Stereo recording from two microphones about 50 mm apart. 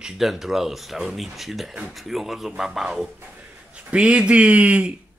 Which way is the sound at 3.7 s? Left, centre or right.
Right.